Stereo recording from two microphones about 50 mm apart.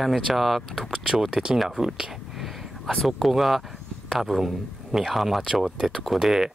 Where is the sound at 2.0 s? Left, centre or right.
Centre.